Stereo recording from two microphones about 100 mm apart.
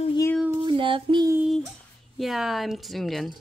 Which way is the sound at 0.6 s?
55° right (ahead or behind).